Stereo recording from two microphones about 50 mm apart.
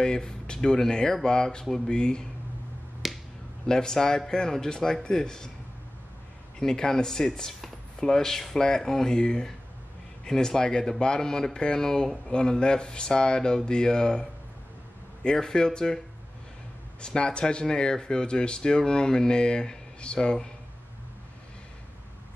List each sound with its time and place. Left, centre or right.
0.0 s speech: centre
3.0 s finger snapping: centre
3.6 s speech: centre
6.6 s speech: centre
15.2 s speech: centre
17.0 s speech: centre